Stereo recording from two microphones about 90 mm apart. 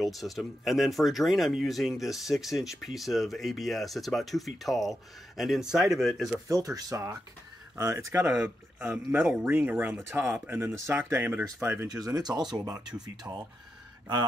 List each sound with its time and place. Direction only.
0.0 s speech: centre (ahead or behind)
6.5 s speech: 40° right (ahead or behind)
11.9 s speech: 45° right (ahead or behind)
13.2 s speech: 30° right (ahead or behind)